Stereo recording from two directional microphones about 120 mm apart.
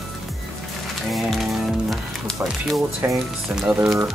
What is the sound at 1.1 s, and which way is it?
Music, centre (ahead or behind).